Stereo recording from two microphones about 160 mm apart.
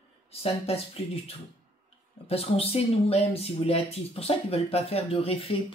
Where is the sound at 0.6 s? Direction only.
40° left (ahead or behind).